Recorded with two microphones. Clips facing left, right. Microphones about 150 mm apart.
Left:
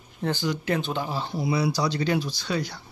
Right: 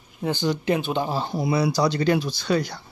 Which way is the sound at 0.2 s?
15° right (ahead or behind).